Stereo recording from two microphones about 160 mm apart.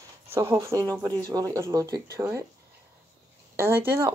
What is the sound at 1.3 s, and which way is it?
Speech, 20° right (ahead or behind).